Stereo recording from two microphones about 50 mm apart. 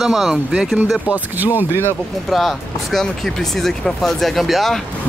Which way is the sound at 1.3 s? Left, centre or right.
Right.